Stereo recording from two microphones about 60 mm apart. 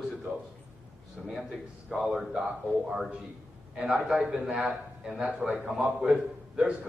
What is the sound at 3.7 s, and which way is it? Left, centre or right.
A man's voice, centre.